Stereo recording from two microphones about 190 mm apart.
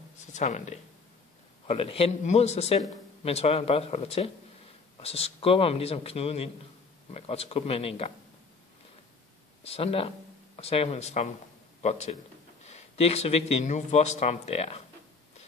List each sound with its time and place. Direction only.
0.3 s speech: 40° left (ahead or behind)
9.6 s speech: 30° left (ahead or behind)